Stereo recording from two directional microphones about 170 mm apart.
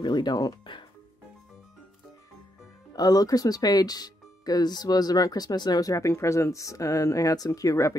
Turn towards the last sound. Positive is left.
turn(degrees=20)  # may be behind; listen again after turning